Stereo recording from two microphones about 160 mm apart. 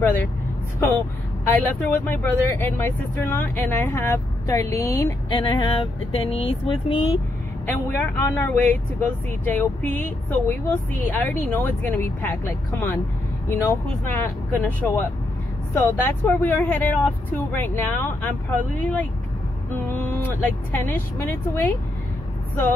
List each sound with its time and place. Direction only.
0.0 s a woman's voice: 10° left (ahead or behind)
1.5 s speech: 10° left (ahead or behind)
5.3 s speech: 30° left (ahead or behind)
7.6 s speech: 15° left (ahead or behind)
13.5 s speech: 15° left (ahead or behind)